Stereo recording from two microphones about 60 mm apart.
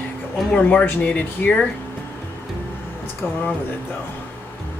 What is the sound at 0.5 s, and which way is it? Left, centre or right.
Speech, left.